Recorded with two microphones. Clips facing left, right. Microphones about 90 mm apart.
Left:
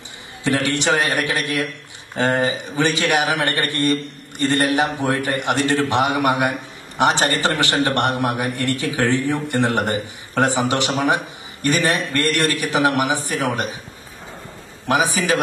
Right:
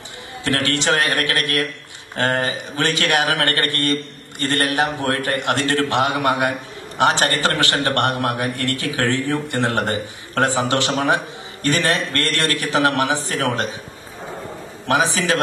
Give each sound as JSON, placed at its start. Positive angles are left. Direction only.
{"t": 0.4, "sound": "a man's voice", "side_deg": 20}
{"t": 14.9, "sound": "a man's voice", "side_deg": 15}